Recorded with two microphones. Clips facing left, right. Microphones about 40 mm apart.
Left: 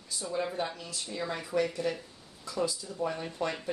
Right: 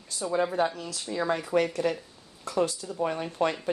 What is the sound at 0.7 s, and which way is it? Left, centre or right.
Speech, right.